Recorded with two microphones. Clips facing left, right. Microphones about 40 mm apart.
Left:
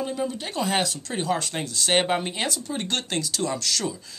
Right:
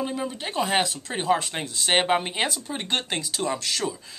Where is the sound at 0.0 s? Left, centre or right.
Centre.